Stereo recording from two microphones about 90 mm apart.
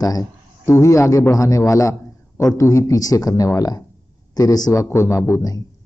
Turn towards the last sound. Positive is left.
turn(degrees=30)  # may be behind; listen again after turning